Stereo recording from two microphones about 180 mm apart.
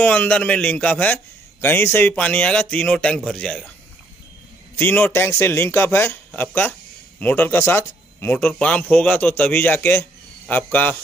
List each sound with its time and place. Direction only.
0.0 s a man's voice: 5° left (ahead or behind)
4.7 s a man's voice: 10° left (ahead or behind)